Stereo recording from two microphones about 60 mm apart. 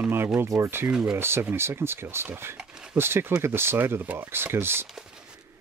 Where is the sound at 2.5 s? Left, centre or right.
Centre.